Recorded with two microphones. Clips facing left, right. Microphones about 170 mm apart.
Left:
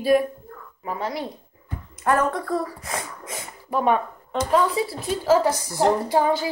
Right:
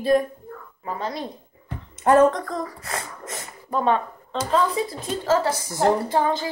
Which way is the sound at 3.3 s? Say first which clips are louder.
Even; 5° left (ahead or behind).